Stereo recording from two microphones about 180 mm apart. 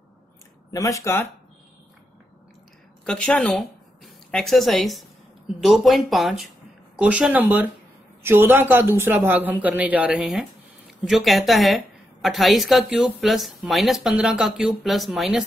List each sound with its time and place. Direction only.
0.7 s speech: 15° left (ahead or behind)
3.1 s a woman's voice: 5° left (ahead or behind)